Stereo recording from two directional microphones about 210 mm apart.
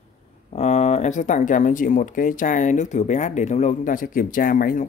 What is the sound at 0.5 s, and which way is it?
Speech, 30° left (ahead or behind).